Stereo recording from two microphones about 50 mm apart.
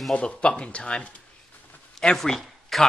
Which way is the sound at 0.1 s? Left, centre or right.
Centre.